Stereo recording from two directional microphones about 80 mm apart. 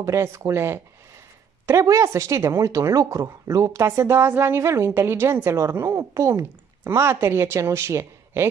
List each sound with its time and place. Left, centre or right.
0.0 s a woman's voice: right